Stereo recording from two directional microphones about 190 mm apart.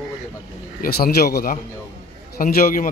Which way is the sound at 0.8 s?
50° left (ahead or behind).